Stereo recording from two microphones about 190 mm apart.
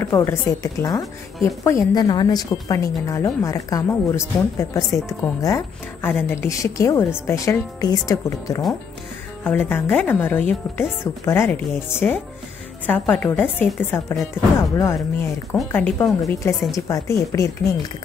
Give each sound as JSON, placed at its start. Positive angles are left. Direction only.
{"t": 0.0, "sound": "a woman's voice", "side_deg": 15}